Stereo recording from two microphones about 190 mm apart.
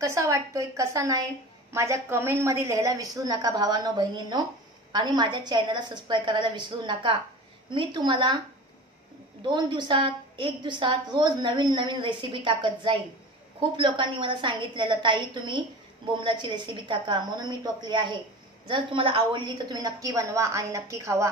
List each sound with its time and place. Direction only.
0.0 s a woman's voice: 15° right (ahead or behind)
9.4 s a woman's voice: 25° right (ahead or behind)